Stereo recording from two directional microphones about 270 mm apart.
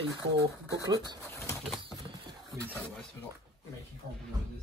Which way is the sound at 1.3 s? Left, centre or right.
Centre.